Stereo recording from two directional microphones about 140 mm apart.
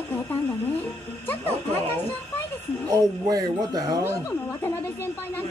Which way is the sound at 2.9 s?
25° right (ahead or behind).